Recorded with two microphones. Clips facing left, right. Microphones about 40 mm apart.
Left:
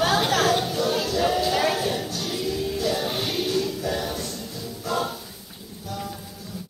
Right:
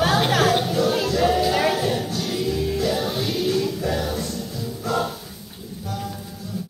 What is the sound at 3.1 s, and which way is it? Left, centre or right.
Music, centre.